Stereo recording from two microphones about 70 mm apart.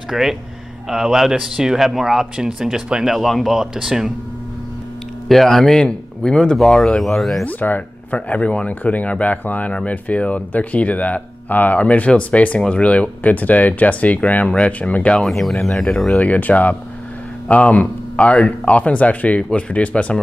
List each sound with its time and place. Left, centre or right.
0.1 s speech: centre
5.3 s speech: centre
7.4 s speech: left
15.2 s speech: centre
16.2 s speech: left